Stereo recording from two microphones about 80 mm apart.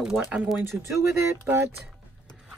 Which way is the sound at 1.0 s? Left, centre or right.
Right.